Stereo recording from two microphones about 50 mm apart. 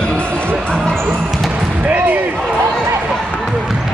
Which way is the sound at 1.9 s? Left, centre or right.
Right.